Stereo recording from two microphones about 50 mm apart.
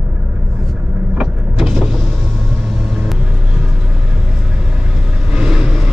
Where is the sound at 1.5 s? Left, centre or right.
Centre.